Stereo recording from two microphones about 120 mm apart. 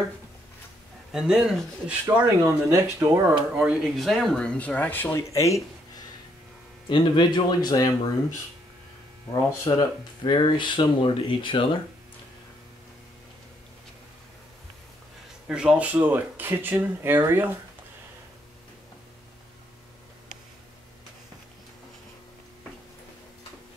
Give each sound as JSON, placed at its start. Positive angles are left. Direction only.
{"t": 1.1, "sound": "speech", "side_deg": -5}
{"t": 2.4, "sound": "speech", "side_deg": -25}
{"t": 3.5, "sound": "speech", "side_deg": -10}
{"t": 6.9, "sound": "speech", "side_deg": 35}
{"t": 9.3, "sound": "speech", "side_deg": 30}
{"t": 15.4, "sound": "speech", "side_deg": -10}